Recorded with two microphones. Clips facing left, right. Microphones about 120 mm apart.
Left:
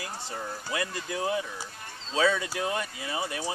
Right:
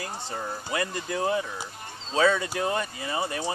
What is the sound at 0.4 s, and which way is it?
Speech, 20° right (ahead or behind).